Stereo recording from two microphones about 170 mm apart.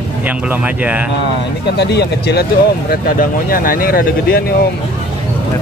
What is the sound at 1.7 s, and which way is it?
Speech, 80° left.